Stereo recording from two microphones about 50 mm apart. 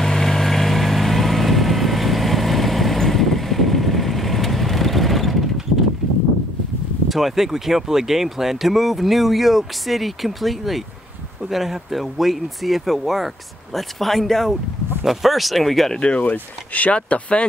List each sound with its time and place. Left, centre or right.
0.0 s vehicle: centre
7.1 s speech: centre
16.0 s speech: left